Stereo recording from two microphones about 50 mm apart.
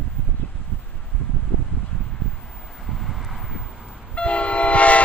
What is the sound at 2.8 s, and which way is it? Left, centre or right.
Vehicle, centre.